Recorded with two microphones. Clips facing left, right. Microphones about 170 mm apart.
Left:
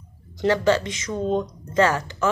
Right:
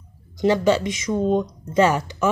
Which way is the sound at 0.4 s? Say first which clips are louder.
Right 2 dB; 15° right (ahead or behind).